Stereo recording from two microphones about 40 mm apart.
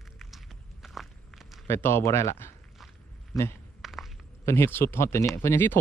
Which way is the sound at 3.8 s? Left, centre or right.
Centre.